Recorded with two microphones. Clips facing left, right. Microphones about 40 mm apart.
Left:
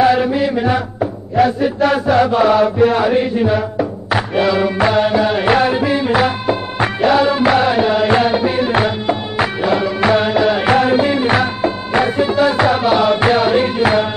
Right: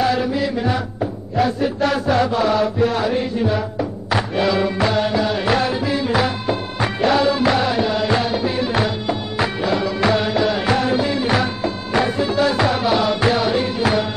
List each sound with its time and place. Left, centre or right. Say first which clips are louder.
0.0 s chant: left 6 dB; left
1.3 s chant: left 5 dB; centre
2.3 s mantra: left 5 dB; centre
3.5 s music: left 5 dB; centre; by 14.0 s left